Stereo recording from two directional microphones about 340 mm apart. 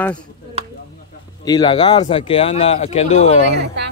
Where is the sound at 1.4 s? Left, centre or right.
Centre.